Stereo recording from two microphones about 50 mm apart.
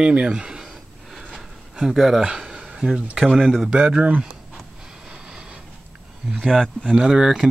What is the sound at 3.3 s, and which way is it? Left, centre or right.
Speech, centre.